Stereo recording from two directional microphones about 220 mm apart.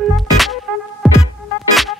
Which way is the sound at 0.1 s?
Centre (ahead or behind).